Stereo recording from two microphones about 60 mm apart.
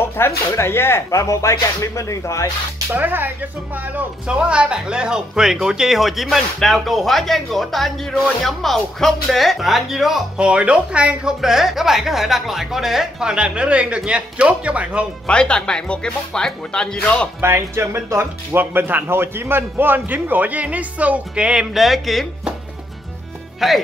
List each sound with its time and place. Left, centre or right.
0.5 s speech: left
1.1 s music: left
2.9 s a man's voice: right
4.3 s speech: centre
11.4 s a woman's voice: centre
15.2 s speech: centre
17.4 s a man's voice: right; by 21.6 s centre
21.7 s speech: centre
23.6 s speech: centre